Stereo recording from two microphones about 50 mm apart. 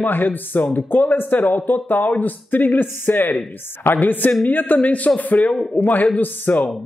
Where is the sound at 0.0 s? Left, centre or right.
Left.